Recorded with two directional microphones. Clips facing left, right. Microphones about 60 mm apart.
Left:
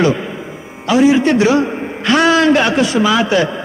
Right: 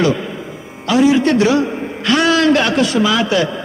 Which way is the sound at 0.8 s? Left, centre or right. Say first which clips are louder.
Left 1 dB; left.